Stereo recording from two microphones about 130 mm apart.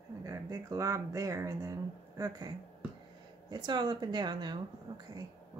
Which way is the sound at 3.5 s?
35° right (ahead or behind).